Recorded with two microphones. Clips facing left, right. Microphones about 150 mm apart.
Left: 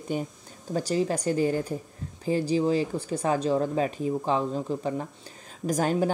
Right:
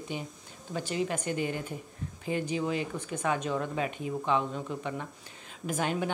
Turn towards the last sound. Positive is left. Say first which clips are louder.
# left 6 dB
turn(degrees=40)  # may be behind; listen again after turning